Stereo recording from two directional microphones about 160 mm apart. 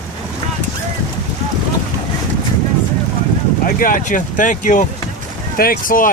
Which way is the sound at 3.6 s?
60° left (ahead or behind).